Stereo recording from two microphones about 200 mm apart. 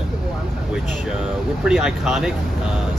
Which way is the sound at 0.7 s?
Centre (ahead or behind).